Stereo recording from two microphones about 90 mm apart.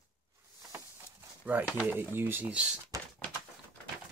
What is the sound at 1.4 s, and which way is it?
Speech, 20° right (ahead or behind).